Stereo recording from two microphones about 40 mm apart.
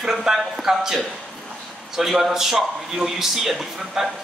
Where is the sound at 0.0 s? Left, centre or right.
Centre.